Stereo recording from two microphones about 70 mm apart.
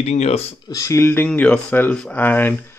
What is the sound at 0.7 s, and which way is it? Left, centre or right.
Speech, left.